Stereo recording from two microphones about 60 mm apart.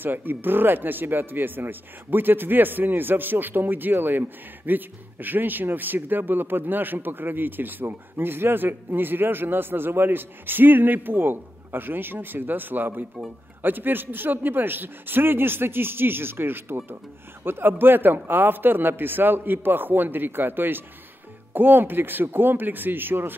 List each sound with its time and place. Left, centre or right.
0.0 s speech: right